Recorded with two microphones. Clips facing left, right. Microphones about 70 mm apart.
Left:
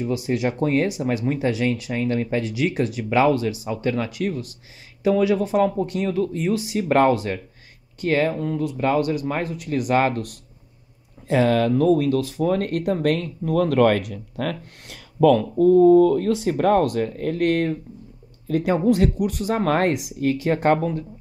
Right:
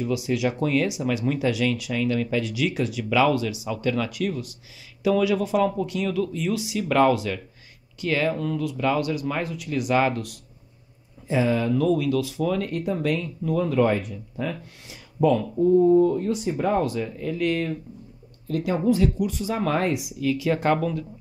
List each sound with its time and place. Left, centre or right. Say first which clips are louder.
0.0 s speech: left 1 dB; left
11.2 s speech: left 4 dB; left
11.7 s speech: left 3 dB; left
18.7 s speech: left 2 dB; left